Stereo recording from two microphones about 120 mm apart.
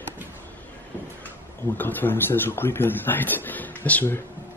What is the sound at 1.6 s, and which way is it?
Speech, 15° left (ahead or behind).